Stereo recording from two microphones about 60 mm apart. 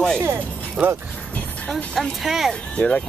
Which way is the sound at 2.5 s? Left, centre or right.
Centre.